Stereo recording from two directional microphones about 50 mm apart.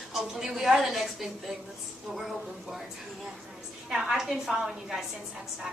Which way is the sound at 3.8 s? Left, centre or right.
Centre.